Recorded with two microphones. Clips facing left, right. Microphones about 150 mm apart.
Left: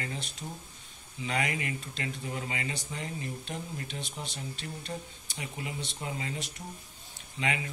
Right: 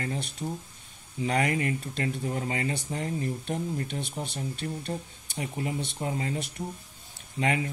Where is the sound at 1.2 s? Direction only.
35° right (ahead or behind); by 4.9 s 55° right (ahead or behind).